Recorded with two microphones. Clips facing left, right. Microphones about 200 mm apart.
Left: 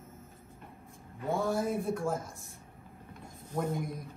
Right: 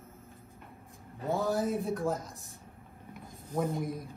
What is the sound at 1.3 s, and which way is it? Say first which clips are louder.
Speech: right 1 dB; centre (ahead or behind).